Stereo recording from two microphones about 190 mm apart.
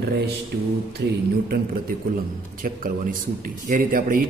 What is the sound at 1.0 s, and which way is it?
Speech, 70° right (ahead or behind).